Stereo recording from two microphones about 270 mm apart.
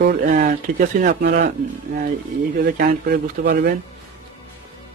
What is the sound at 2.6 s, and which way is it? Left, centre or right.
Speech, right.